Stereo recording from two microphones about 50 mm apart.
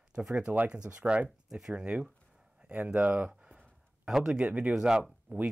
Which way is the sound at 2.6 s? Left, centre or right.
Right.